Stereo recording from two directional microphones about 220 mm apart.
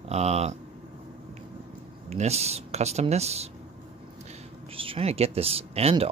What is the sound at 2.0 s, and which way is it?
Speech, 30° right (ahead or behind).